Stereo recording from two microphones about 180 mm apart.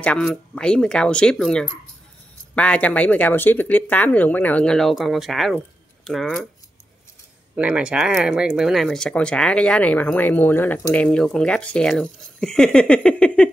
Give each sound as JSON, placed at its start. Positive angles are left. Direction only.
{"t": 0.0, "sound": "speech", "side_deg": 5}
{"t": 7.5, "sound": "speech", "side_deg": -5}